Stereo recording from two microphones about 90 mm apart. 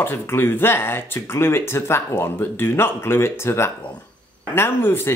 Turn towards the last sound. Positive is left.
turn(degrees=25)  # may be behind; listen again after turning